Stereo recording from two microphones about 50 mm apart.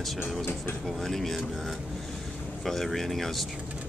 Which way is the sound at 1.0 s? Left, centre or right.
Centre.